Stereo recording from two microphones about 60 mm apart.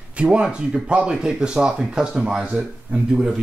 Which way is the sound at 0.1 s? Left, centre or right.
Centre.